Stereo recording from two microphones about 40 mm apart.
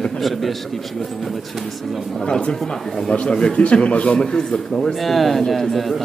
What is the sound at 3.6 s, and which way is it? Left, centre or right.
Speech, left.